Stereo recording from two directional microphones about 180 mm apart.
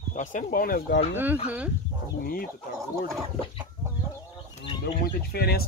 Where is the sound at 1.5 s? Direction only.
5° right (ahead or behind).